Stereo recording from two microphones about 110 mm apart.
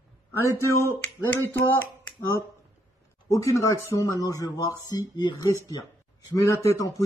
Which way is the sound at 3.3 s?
30° left (ahead or behind).